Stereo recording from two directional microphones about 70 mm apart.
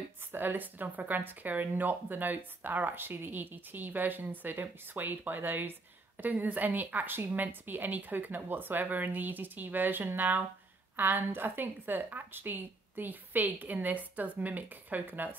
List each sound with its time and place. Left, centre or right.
0.3 s speech: right